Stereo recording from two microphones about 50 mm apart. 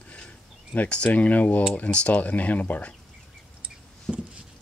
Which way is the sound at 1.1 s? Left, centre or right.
Left.